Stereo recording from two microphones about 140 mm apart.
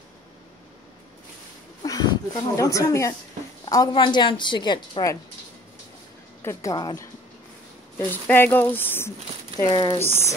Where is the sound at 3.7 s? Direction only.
30° left (ahead or behind).